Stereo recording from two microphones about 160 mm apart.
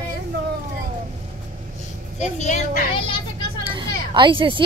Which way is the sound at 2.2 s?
45° left (ahead or behind).